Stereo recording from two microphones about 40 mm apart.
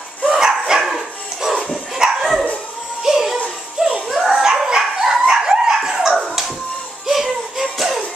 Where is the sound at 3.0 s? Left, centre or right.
Centre.